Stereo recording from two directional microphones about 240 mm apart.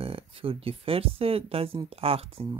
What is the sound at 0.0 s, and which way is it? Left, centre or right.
Speech, right.